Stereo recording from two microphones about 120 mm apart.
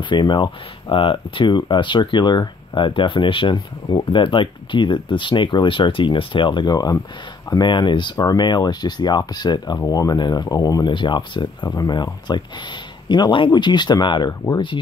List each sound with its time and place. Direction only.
0.0 s speech: 40° left (ahead or behind)